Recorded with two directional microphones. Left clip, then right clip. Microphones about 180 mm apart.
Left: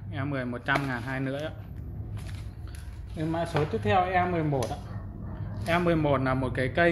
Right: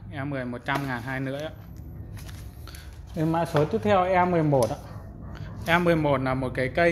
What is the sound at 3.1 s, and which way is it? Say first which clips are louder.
Speech: right 5 dB; 45° right (ahead or behind).